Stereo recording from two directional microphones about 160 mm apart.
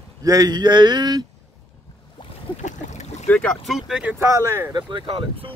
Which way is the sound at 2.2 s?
30° left (ahead or behind).